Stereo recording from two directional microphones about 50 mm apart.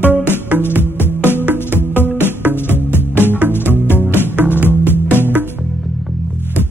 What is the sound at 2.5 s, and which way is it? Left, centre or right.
Music, left.